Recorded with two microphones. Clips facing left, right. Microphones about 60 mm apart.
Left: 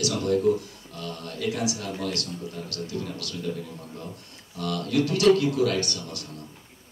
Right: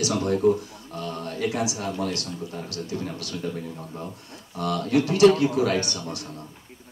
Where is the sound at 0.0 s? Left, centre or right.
Right.